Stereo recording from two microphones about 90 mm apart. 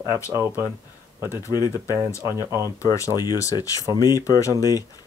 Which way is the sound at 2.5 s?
30° right (ahead or behind).